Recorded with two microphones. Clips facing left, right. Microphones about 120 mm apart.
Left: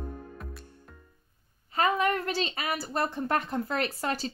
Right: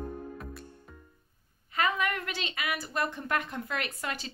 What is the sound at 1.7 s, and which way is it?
A woman's voice, 35° left (ahead or behind).